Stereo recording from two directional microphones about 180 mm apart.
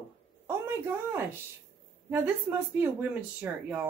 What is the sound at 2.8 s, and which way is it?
Speech, 10° right (ahead or behind).